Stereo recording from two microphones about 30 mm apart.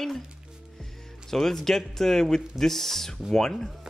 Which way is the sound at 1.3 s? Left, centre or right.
Centre.